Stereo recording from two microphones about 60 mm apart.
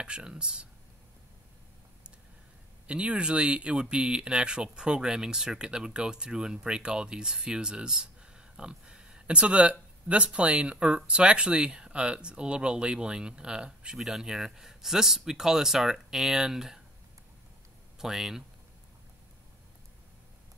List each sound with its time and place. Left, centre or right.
0.0 s speech: centre
2.9 s speech: centre
17.9 s speech: centre